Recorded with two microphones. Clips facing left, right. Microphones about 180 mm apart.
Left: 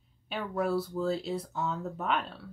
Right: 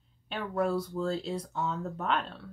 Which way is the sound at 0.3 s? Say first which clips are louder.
Even; 5° left (ahead or behind).